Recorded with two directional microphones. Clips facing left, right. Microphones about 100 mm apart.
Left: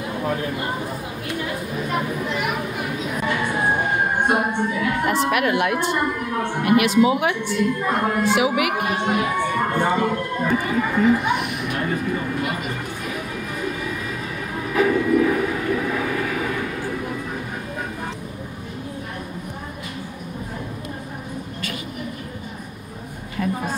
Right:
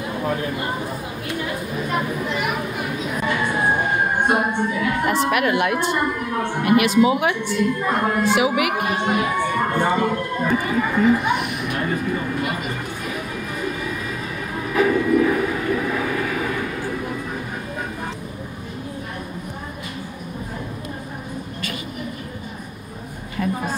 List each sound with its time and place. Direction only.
0.3 s a woman's voice: 20° right (ahead or behind)
14.7 s vehicle: 20° right (ahead or behind)